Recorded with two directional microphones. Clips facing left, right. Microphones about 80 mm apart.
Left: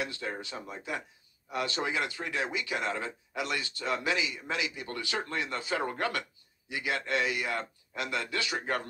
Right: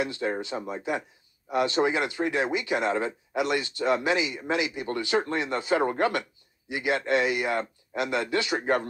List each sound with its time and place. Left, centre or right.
0.0 s speech: right